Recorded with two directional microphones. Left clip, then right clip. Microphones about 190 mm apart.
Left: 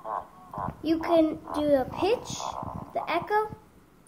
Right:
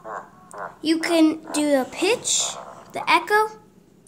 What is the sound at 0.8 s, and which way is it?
A woman's voice, 45° right (ahead or behind).